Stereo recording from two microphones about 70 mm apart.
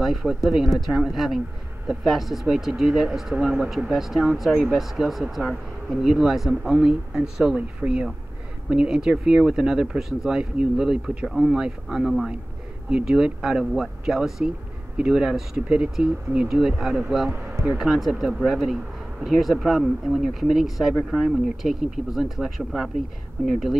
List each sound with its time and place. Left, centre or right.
0.0 s speech: centre
17.3 s speech: right
17.7 s speech: centre